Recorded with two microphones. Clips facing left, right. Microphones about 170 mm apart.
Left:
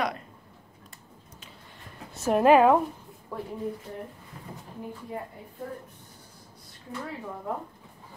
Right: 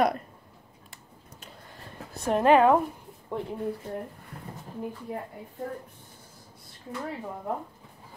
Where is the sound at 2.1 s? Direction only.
5° left (ahead or behind).